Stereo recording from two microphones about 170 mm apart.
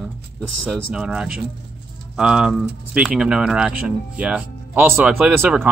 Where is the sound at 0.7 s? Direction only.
5° right (ahead or behind).